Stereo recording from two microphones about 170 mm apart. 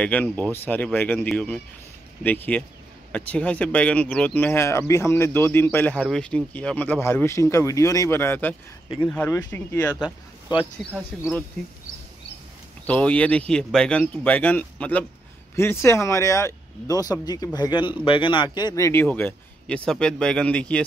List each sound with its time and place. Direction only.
0.0 s speech: 10° left (ahead or behind)
10.5 s speech: 25° left (ahead or behind)
11.1 s speech: centre (ahead or behind)
12.8 s speech: 10° left (ahead or behind)